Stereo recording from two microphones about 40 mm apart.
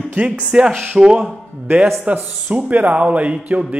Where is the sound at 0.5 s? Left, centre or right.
Right.